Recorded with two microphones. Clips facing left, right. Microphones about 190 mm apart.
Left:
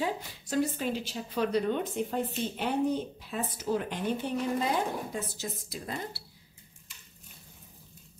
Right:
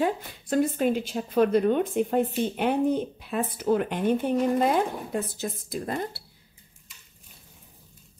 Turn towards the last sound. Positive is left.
turn(degrees=-55)  # may be behind; listen again after turning